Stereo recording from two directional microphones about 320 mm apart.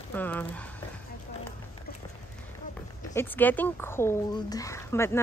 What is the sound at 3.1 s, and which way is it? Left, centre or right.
Speech, centre.